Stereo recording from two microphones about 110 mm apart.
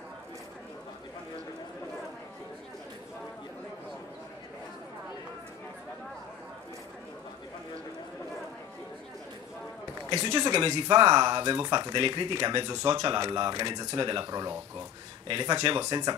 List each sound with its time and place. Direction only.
10.2 s speech: 40° right (ahead or behind)